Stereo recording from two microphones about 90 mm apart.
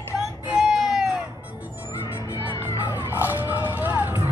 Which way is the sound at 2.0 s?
65° left (ahead or behind).